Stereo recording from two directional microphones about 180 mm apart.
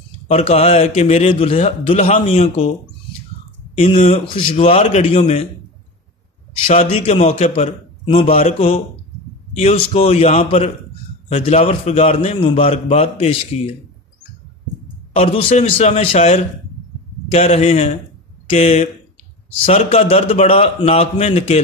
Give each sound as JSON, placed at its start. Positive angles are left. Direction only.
{"t": 0.3, "sound": "a man's voice", "side_deg": 35}
{"t": 3.7, "sound": "a man's voice", "side_deg": 35}
{"t": 6.7, "sound": "a man's voice", "side_deg": 35}
{"t": 15.1, "sound": "a man's voice", "side_deg": 35}